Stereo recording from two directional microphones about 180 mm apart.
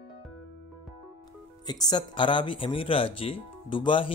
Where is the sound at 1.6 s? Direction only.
20° left (ahead or behind).